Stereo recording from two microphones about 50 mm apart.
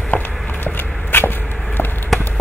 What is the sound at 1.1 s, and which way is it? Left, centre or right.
Arrow, left.